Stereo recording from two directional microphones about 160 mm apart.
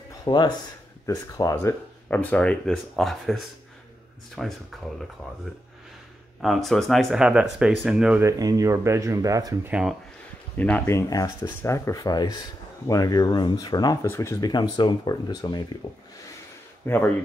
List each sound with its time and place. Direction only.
0.2 s speech: 25° left (ahead or behind); by 4.5 s centre (ahead or behind)
6.4 s speech: centre (ahead or behind)
8.2 s speech: 20° right (ahead or behind)
9.7 s speech: 5° right (ahead or behind)
10.6 s speech: 15° left (ahead or behind); by 16.0 s 30° left (ahead or behind)
16.8 s speech: 15° left (ahead or behind)